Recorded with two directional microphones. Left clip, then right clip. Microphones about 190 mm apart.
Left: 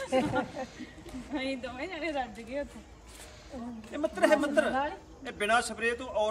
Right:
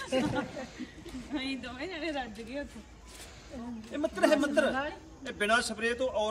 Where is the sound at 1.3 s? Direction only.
15° left (ahead or behind).